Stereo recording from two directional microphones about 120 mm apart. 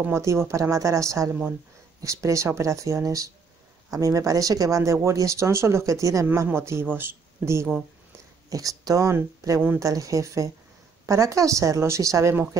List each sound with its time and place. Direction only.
0.0 s speech: 25° right (ahead or behind)